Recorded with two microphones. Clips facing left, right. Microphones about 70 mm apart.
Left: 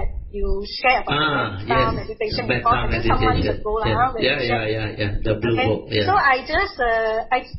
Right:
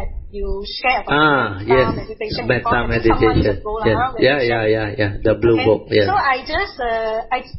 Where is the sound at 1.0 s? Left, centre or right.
Right.